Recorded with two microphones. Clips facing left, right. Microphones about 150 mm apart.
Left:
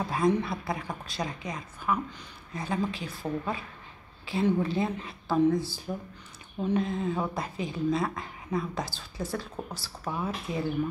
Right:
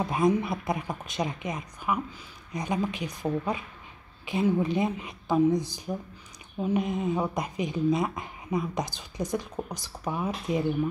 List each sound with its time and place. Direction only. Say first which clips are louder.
0.0 s a woman's voice: right 2 dB; 20° right (ahead or behind)